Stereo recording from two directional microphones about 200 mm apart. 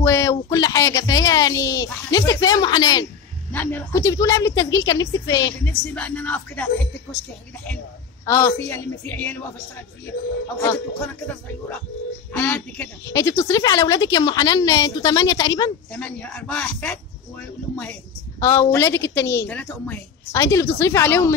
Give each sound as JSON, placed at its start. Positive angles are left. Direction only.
{"t": 0.0, "sound": "a woman's voice", "side_deg": 15}
{"t": 5.9, "sound": "a woman's voice", "side_deg": 5}
{"t": 8.3, "sound": "a woman's voice", "side_deg": 15}
{"t": 12.3, "sound": "a woman's voice", "side_deg": 10}
{"t": 15.9, "sound": "a woman's voice", "side_deg": 5}